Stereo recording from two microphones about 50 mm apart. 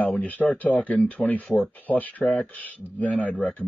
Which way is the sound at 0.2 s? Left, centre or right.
Left.